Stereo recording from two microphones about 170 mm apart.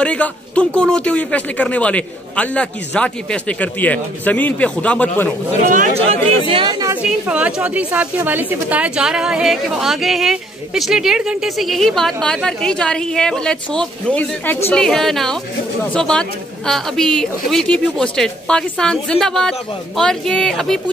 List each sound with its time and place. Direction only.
0.0 s a man's voice: 5° left (ahead or behind)
5.9 s speech: 35° right (ahead or behind)
7.0 s a woman's voice: 5° right (ahead or behind)